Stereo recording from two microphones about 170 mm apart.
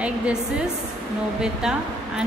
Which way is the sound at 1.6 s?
5° right (ahead or behind).